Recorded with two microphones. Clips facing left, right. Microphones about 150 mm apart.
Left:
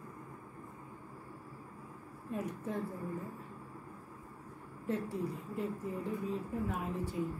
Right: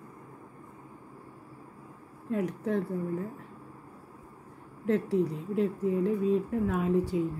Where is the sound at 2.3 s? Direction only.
75° right (ahead or behind).